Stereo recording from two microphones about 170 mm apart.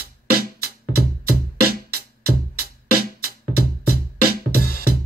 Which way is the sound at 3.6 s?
60° right (ahead or behind).